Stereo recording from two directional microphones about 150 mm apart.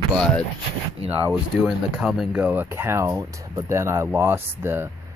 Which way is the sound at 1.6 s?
5° right (ahead or behind).